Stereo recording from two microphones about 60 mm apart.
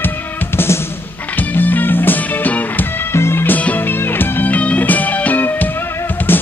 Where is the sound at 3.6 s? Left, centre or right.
Left.